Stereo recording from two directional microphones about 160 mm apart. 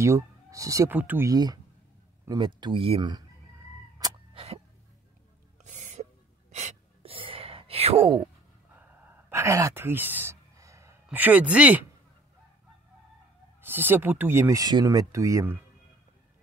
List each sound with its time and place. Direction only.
0.0 s speech: 20° right (ahead or behind)
1.3 s speech: 25° right (ahead or behind)
4.3 s a sound: 35° right (ahead or behind)
5.6 s music: 50° right (ahead or behind)
6.5 s sigh: 40° right (ahead or behind)
9.3 s a sound: 20° right (ahead or behind)
11.1 s speech: 10° right (ahead or behind)
13.6 s speech: 15° right (ahead or behind)